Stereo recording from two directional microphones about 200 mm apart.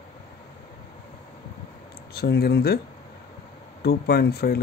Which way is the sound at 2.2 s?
50° left (ahead or behind).